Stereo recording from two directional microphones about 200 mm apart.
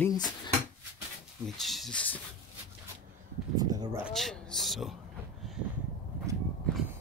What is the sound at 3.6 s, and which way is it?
Speech, 20° right (ahead or behind).